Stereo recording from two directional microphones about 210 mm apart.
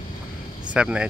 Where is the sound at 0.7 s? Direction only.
5° right (ahead or behind).